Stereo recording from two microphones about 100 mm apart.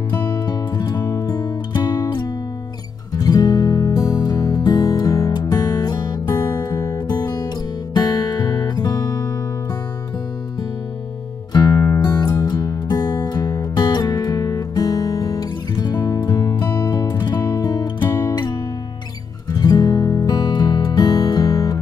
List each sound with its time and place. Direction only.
0.3 s music: 45° left (ahead or behind)
11.5 s music: 40° left (ahead or behind)